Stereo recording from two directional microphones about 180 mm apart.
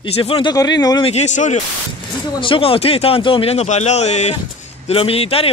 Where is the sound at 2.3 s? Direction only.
30° left (ahead or behind).